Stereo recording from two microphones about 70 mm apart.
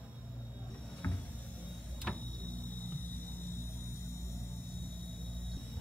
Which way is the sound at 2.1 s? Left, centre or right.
Centre.